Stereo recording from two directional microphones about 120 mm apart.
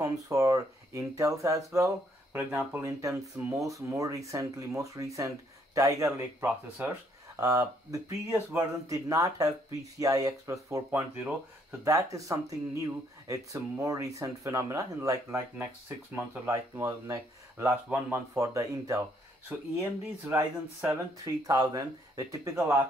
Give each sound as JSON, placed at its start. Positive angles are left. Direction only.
{"t": 0.0, "sound": "speech", "side_deg": -30}
{"t": 2.3, "sound": "speech", "side_deg": -15}
{"t": 2.9, "sound": "speech", "side_deg": -25}
{"t": 7.4, "sound": "speech", "side_deg": -30}
{"t": 11.8, "sound": "speech", "side_deg": -25}
{"t": 16.2, "sound": "speech", "side_deg": -20}
{"t": 19.5, "sound": "speech", "side_deg": -15}
{"t": 21.2, "sound": "speech", "side_deg": -30}